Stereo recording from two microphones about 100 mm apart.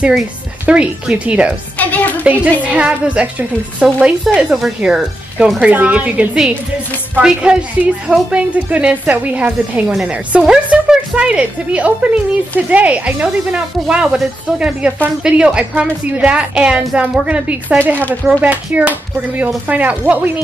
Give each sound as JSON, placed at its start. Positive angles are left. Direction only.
{"t": 0.7, "sound": "a woman's voice", "side_deg": -10}
{"t": 1.8, "sound": "music", "side_deg": 15}
{"t": 2.2, "sound": "a woman's voice", "side_deg": -15}